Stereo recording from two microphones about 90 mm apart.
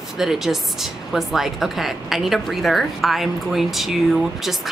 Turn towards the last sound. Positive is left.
turn(degrees=0)  # may be behind; listen again after turning